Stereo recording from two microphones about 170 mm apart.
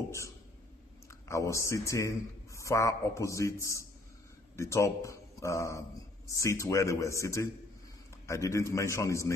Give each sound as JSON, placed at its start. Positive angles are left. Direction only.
{"t": 1.3, "sound": "a man's voice", "side_deg": 20}